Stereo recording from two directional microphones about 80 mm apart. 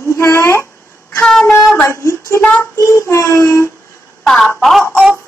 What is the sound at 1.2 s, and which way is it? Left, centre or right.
Child singing, centre.